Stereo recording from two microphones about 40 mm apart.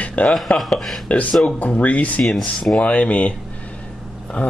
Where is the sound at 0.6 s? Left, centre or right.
Centre.